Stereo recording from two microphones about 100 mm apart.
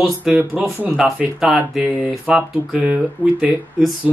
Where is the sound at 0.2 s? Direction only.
10° right (ahead or behind).